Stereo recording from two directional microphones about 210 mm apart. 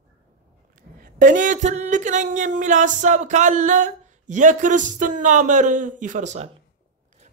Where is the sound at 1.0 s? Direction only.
40° right (ahead or behind).